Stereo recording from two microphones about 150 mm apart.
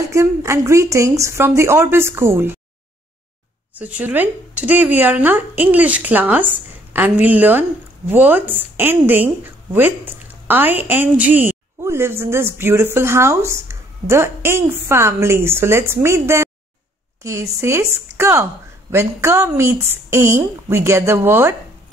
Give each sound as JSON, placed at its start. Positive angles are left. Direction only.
{"t": 0.1, "sound": "a woman's voice", "side_deg": -20}
{"t": 3.7, "sound": "a woman's voice", "side_deg": -10}